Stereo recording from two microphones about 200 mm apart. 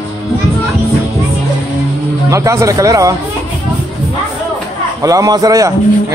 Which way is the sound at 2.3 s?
15° right (ahead or behind).